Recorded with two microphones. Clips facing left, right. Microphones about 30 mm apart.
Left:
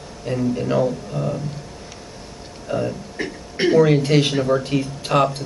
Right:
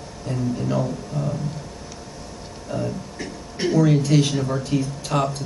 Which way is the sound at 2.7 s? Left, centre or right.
Left.